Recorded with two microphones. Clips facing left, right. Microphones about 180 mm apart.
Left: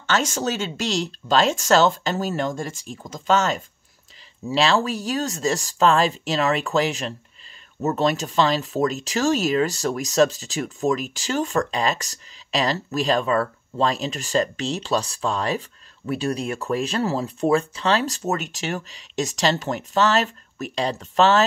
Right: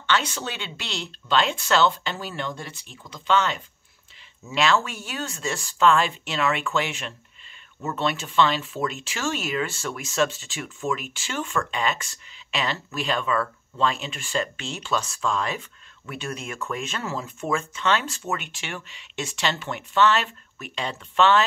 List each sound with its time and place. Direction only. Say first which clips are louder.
0.0 s speech: left 3 dB; 45° left (ahead or behind)